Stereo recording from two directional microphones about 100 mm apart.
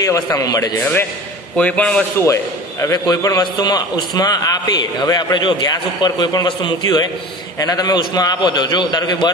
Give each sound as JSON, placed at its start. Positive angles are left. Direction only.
{"t": 0.0, "sound": "a man's voice", "side_deg": 30}
{"t": 1.6, "sound": "speech", "side_deg": 10}
{"t": 2.1, "sound": "a man's voice", "side_deg": 30}